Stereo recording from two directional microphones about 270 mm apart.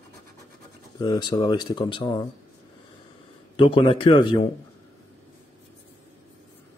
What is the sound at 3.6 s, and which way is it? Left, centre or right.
Speech, centre.